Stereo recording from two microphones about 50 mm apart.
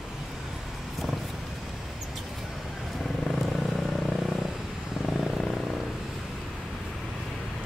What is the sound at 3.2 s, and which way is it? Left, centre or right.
Vehicle, centre.